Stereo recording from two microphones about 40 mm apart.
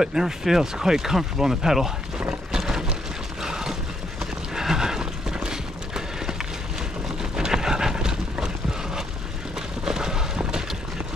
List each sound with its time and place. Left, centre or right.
0.0 s speech: centre
2.5 s vehicle: centre
3.4 s a sound: centre
4.6 s clip-clop: centre
7.2 s vehicle: centre
9.8 s a sound: centre